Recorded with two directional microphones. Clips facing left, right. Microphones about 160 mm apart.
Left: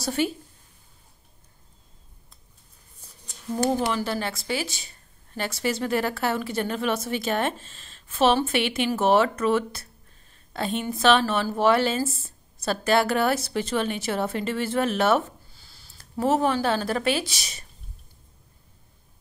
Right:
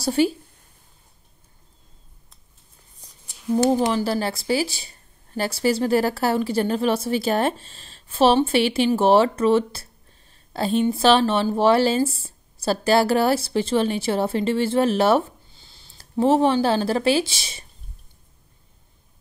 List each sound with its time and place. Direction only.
0.0 s speech: 30° right (ahead or behind)
3.5 s speech: 35° right (ahead or behind)